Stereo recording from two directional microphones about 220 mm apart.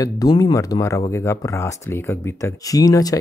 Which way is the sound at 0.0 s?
15° left (ahead or behind).